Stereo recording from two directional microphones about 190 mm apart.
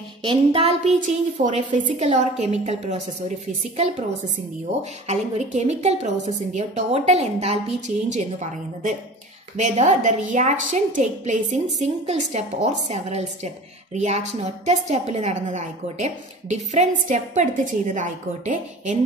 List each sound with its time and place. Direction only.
0.2 s a woman's voice: 30° right (ahead or behind)
5.0 s a woman's voice: 35° right (ahead or behind)